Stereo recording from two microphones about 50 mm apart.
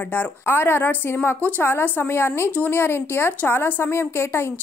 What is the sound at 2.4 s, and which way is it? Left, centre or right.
Speech, left.